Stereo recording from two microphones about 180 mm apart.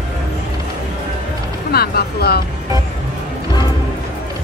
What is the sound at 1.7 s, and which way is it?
Music, 60° left (ahead or behind).